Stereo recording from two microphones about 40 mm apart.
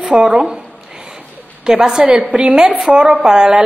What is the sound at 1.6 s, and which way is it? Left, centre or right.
Speech, centre.